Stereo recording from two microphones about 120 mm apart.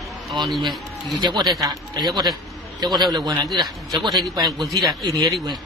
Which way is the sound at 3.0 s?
35° right (ahead or behind).